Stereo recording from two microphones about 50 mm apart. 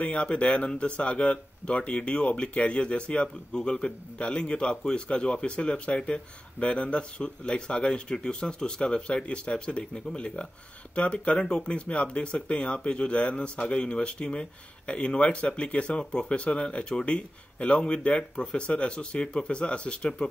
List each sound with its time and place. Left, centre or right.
0.1 s speech: centre